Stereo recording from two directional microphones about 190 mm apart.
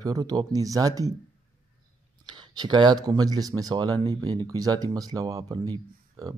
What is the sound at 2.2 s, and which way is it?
Speech, 25° right (ahead or behind).